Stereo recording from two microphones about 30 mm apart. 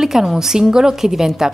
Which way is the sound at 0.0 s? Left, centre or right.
Centre.